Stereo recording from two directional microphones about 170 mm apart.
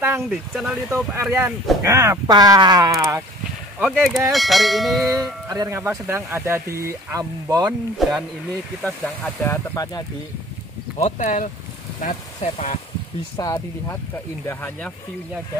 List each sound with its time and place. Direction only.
0.3 s speech: centre (ahead or behind)
0.8 s speech: 15° right (ahead or behind)
3.8 s speech: centre (ahead or behind)
5.5 s speech: 20° right (ahead or behind)
8.0 s speech: centre (ahead or behind)
9.4 s speech: 20° left (ahead or behind)
11.0 s speech: 45° left (ahead or behind)
13.4 s speech: 20° left (ahead or behind)